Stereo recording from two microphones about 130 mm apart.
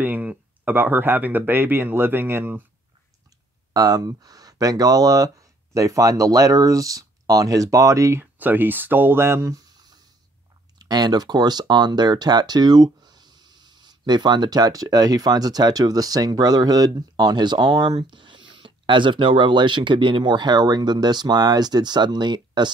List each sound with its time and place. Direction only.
0.0 s speech: 15° right (ahead or behind)
3.7 s speech: 30° right (ahead or behind)
10.8 s speech: 30° right (ahead or behind)